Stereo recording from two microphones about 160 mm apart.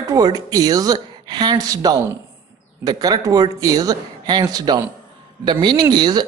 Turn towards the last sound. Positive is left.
turn(degrees=-25)  # may be behind; listen again after turning